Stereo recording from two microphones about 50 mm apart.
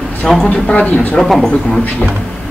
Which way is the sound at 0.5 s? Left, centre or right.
Left.